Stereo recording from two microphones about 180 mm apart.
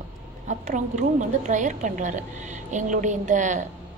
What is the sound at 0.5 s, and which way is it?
A woman's voice, 45° right (ahead or behind).